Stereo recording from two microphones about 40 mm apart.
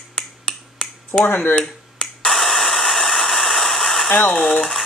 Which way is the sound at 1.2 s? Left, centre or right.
Left.